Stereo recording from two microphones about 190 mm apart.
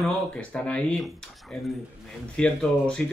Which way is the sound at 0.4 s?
5° left (ahead or behind).